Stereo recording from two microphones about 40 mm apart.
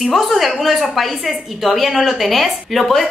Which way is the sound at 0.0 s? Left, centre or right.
Centre.